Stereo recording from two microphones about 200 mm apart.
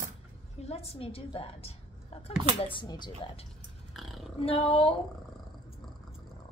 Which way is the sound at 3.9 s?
Centre (ahead or behind).